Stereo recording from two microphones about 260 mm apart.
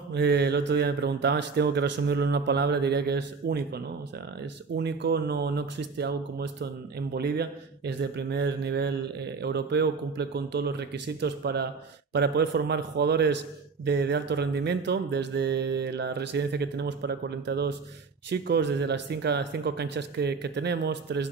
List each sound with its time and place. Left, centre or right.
0.1 s a man's voice: right